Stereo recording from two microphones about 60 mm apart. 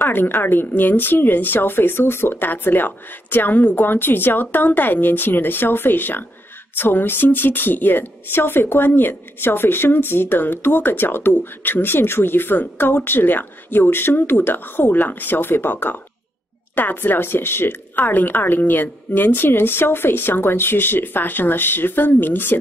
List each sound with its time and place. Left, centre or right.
0.0 s a woman's voice: left